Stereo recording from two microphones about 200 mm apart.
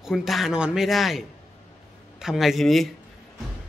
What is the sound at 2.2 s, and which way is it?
Speech, centre (ahead or behind).